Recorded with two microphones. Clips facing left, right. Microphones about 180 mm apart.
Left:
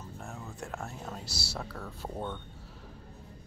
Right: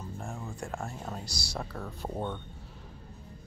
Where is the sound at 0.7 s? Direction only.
10° right (ahead or behind).